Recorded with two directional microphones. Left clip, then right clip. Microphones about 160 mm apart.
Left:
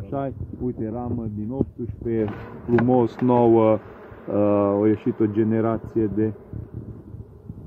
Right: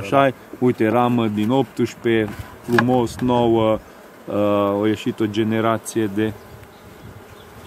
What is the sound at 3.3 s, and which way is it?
Speech, 20° right (ahead or behind).